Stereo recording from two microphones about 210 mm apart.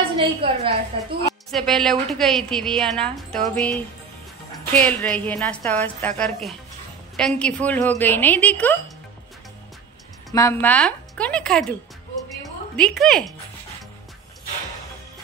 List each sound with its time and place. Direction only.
0.1 s a woman's voice: 25° right (ahead or behind)
1.5 s a woman's voice: centre (ahead or behind)
10.3 s a woman's voice: 10° left (ahead or behind)
12.7 s a woman's voice: 5° left (ahead or behind)